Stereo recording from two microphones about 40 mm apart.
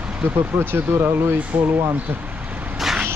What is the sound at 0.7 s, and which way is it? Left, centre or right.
Speech, right.